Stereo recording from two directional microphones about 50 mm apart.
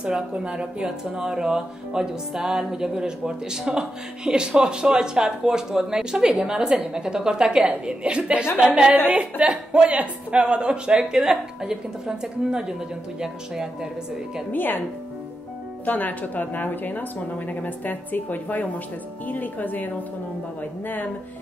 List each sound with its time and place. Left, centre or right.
0.0 s a woman's voice: centre
9.1 s a woman's voice: right
14.5 s speech: left
15.8 s speech: left